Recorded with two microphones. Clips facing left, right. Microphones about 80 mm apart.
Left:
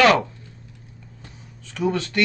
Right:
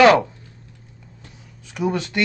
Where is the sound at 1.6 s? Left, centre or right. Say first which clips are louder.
Even; centre.